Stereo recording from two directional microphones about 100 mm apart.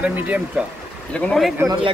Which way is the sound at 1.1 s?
10° left (ahead or behind).